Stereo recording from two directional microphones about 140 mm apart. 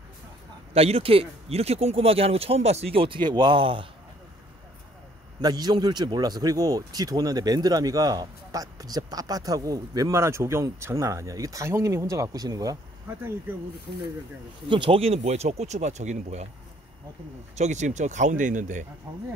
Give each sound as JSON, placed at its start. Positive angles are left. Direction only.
{"t": 0.7, "sound": "speech", "side_deg": -45}
{"t": 5.4, "sound": "speech", "side_deg": -30}
{"t": 14.7, "sound": "speech", "side_deg": -40}
{"t": 17.6, "sound": "speech", "side_deg": -55}